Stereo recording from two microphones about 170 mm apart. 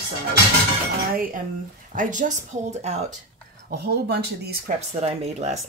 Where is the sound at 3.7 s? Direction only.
70° right (ahead or behind).